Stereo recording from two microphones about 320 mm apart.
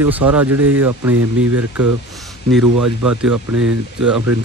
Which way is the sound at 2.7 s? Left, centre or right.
Right.